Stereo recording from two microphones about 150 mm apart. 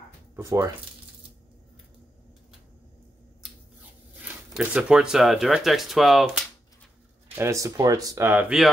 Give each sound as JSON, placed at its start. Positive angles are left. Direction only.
{"t": 0.4, "sound": "speech", "side_deg": -20}
{"t": 4.2, "sound": "speech", "side_deg": -10}
{"t": 7.3, "sound": "speech", "side_deg": -20}